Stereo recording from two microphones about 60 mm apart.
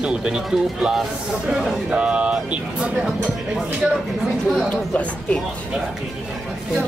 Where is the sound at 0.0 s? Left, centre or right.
Centre.